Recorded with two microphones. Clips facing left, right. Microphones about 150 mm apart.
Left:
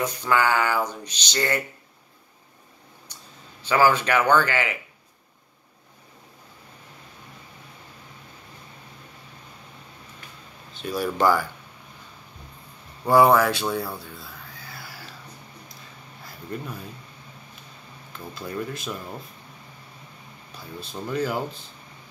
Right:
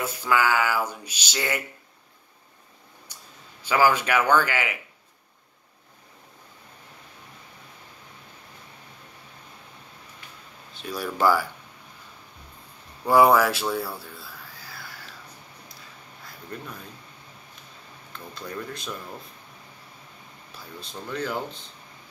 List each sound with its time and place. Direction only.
0.0 s speech: 5° right (ahead or behind)
3.1 s a sound: 10° right (ahead or behind)
3.6 s speech: 10° right (ahead or behind)
11.0 s speech: 5° right (ahead or behind)
13.1 s speech: 10° right (ahead or behind)
14.1 s a sound: 5° right (ahead or behind)
16.5 s speech: 5° left (ahead or behind)
18.3 s speech: 5° left (ahead or behind)
21.1 s speech: 10° left (ahead or behind)